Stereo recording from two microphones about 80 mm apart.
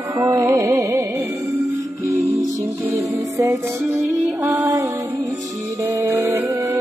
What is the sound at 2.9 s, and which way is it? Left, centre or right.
Music, right.